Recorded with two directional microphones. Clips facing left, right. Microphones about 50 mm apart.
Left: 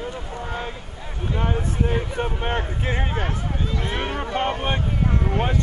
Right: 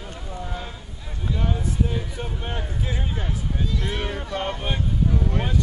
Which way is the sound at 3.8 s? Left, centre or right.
Left.